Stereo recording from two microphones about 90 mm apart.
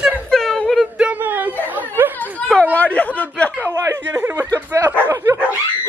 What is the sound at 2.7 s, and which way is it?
Chatter, 15° left (ahead or behind).